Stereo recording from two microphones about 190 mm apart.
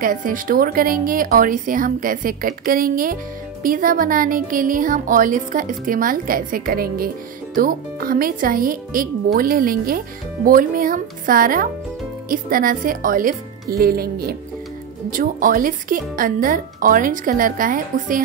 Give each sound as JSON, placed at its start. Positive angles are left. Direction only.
{"t": 0.0, "sound": "speech", "side_deg": -45}